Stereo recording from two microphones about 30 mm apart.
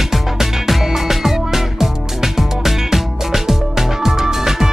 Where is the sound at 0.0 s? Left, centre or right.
Centre.